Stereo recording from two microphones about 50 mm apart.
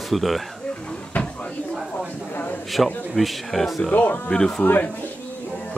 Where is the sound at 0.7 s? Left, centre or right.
Left.